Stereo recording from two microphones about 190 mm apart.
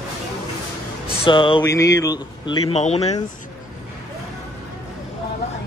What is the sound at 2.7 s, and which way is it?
Speech, 35° left (ahead or behind).